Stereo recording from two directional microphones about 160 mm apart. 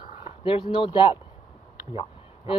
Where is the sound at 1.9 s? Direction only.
35° left (ahead or behind).